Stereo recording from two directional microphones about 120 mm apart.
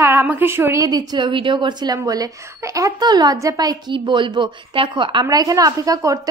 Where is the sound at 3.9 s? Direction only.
45° right (ahead or behind).